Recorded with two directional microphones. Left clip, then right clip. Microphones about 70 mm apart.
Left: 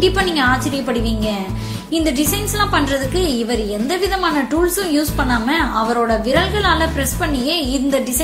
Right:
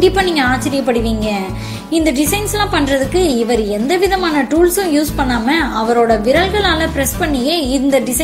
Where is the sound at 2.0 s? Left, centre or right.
Right.